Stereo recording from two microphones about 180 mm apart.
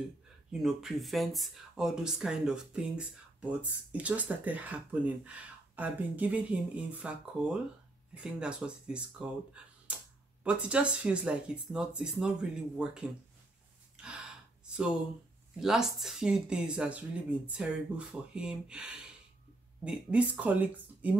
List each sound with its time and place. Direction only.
0.5 s speech: 5° right (ahead or behind)
14.0 s gasp: 5° right (ahead or behind)
15.6 s speech: centre (ahead or behind)